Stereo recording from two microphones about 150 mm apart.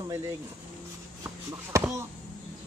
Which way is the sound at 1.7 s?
20° right (ahead or behind).